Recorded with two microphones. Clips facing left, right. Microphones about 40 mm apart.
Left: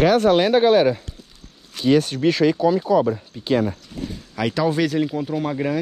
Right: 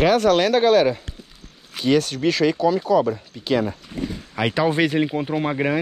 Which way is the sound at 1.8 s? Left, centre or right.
Right.